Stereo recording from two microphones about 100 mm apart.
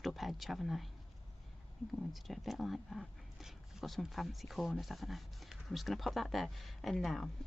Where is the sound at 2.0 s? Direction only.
Centre (ahead or behind).